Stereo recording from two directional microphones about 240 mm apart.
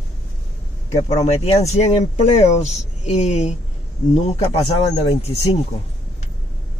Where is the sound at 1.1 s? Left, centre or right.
Left.